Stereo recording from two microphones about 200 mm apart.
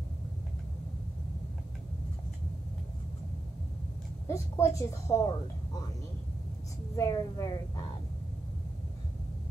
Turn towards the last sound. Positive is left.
turn(degrees=15)  # may be behind; listen again after turning